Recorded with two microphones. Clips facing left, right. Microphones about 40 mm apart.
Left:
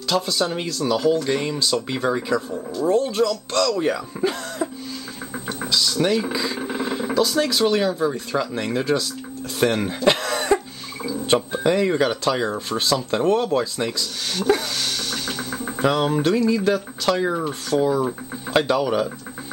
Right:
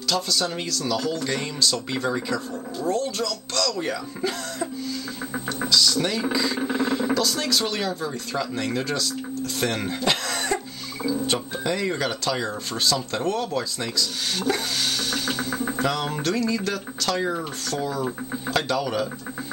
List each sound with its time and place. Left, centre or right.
0.1 s speech: centre
5.7 s speech: centre
6.6 s a sound: centre
7.2 s speech: centre
10.0 s cough: centre
11.2 s speech: centre
14.8 s speech: centre
15.8 s speech: centre